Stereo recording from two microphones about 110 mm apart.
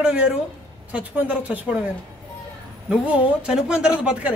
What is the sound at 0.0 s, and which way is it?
A man's voice, 10° right (ahead or behind).